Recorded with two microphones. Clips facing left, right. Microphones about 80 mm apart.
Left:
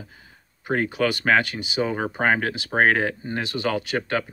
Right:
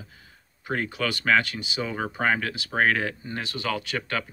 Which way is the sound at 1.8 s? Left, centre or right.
Left.